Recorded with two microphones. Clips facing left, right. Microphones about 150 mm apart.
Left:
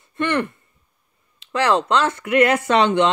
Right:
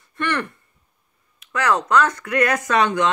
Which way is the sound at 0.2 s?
20° left (ahead or behind).